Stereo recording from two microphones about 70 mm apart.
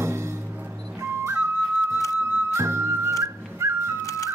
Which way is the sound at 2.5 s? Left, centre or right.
Right.